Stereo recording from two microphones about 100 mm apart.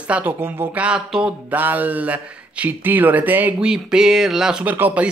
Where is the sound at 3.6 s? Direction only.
5° right (ahead or behind).